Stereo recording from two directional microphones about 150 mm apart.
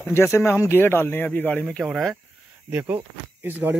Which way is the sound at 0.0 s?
15° left (ahead or behind).